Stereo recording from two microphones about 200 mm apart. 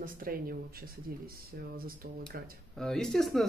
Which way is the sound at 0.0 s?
45° right (ahead or behind).